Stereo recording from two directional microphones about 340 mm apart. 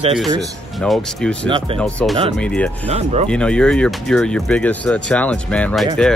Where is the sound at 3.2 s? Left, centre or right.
Centre.